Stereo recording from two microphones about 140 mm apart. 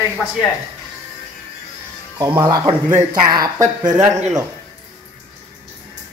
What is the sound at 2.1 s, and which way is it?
Speech, 35° right (ahead or behind).